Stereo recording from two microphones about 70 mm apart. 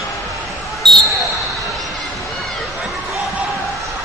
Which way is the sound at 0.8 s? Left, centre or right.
Centre.